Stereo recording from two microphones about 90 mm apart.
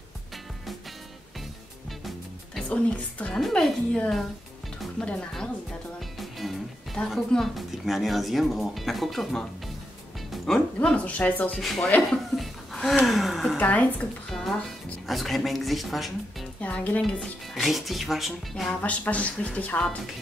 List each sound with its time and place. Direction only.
1.9 s music: centre (ahead or behind)
2.7 s speech: 15° left (ahead or behind)
3.3 s speech: 5° left (ahead or behind)
11.1 s speech: 15° left (ahead or behind)
11.5 s speech: 5° left (ahead or behind)
12.1 s laughter: centre (ahead or behind)
13.0 s speech: centre (ahead or behind)
13.6 s speech: 15° left (ahead or behind)
15.0 s speech: centre (ahead or behind)
16.6 s speech: 15° left (ahead or behind)
17.2 s speech: centre (ahead or behind)
18.7 s speech: 15° left (ahead or behind)